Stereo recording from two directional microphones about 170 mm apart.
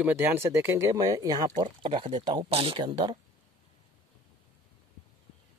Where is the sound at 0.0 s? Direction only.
15° right (ahead or behind).